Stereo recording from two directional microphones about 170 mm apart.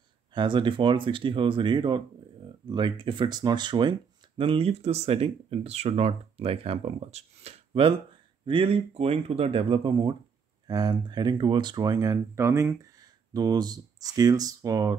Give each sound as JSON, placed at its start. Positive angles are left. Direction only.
{"t": 0.3, "sound": "speech", "side_deg": -25}